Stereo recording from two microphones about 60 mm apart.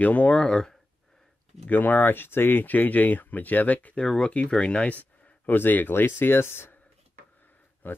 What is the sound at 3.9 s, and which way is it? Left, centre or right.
Speech, centre.